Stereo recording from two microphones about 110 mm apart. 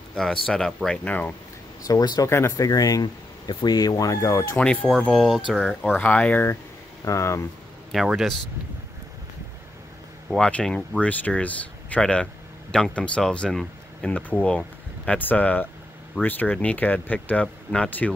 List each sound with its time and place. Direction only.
0.1 s speech: 5° left (ahead or behind)
1.9 s speech: 35° left (ahead or behind)
4.6 s speech: 10° left (ahead or behind)
7.1 s speech: 25° left (ahead or behind)
7.9 s speech: 5° right (ahead or behind)
10.3 s speech: 5° left (ahead or behind)